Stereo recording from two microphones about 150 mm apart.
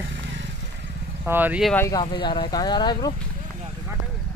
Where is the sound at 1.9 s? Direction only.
30° left (ahead or behind).